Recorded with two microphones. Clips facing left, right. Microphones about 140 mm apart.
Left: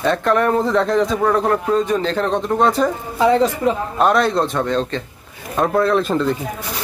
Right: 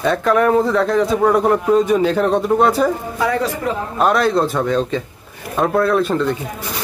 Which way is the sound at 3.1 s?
20° left (ahead or behind).